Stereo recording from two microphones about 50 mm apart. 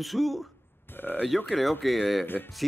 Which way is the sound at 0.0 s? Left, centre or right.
Centre.